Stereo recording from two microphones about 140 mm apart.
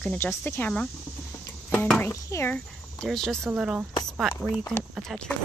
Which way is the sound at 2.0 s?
20° left (ahead or behind).